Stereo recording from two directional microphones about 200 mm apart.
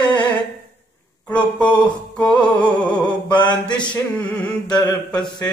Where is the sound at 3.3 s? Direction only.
20° left (ahead or behind).